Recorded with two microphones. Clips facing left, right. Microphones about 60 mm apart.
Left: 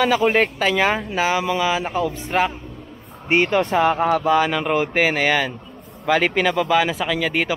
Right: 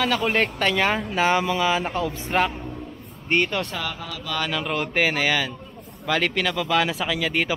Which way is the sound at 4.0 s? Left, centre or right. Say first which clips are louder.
Left 16 dB; left.